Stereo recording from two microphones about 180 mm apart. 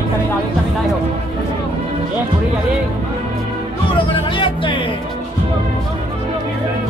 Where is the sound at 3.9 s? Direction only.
30° left (ahead or behind).